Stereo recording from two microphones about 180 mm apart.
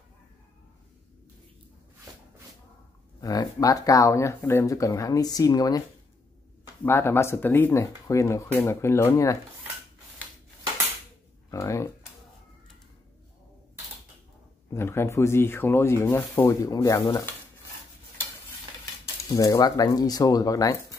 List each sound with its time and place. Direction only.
3.2 s speech: 20° left (ahead or behind)
11.5 s speech: 15° left (ahead or behind)
14.7 s speech: 15° left (ahead or behind)
19.2 s speech: 20° left (ahead or behind)